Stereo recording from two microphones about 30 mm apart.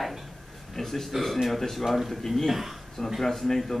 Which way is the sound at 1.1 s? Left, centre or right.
Centre.